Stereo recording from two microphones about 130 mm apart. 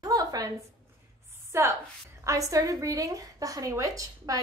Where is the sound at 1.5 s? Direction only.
20° right (ahead or behind).